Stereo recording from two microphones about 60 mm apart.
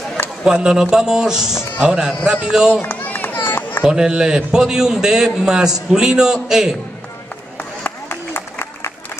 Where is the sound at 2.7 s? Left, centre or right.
Left.